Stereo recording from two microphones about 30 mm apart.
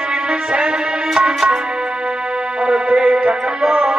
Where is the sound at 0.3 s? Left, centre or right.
Right.